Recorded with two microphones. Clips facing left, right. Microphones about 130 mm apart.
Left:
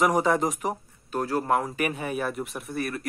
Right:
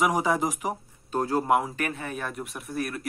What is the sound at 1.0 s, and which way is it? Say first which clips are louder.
Speech: right 1 dB; 25° right (ahead or behind).